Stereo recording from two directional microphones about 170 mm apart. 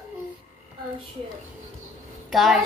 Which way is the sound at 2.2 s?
Centre (ahead or behind).